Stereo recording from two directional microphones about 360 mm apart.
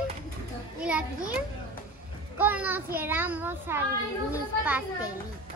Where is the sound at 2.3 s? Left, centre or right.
Centre.